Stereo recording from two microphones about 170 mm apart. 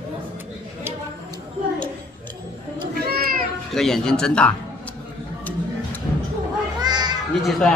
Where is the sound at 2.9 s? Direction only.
65° right (ahead or behind).